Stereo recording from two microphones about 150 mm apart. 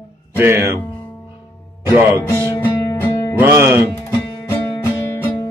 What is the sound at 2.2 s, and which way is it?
Music, 20° left (ahead or behind).